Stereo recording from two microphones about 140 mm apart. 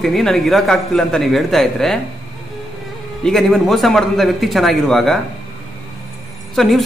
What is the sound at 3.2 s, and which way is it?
Speech, centre (ahead or behind).